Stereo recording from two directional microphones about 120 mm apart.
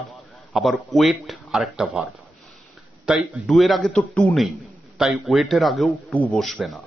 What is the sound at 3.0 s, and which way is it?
A man's voice, centre (ahead or behind).